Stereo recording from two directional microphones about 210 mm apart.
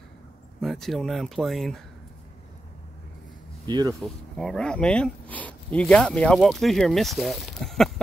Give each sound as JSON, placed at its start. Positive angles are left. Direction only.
{"t": 0.6, "sound": "speech", "side_deg": 0}
{"t": 3.6, "sound": "speech", "side_deg": -20}
{"t": 4.0, "sound": "speech", "side_deg": 0}